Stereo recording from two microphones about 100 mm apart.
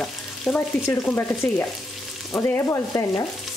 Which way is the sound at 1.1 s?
20° left (ahead or behind).